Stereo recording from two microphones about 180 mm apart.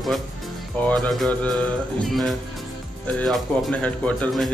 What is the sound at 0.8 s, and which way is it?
Speech, 5° left (ahead or behind).